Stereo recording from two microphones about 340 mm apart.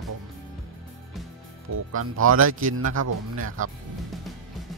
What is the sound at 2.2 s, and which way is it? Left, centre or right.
Speech, right.